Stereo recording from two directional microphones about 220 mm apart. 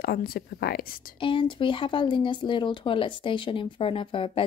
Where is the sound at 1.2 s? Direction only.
25° left (ahead or behind).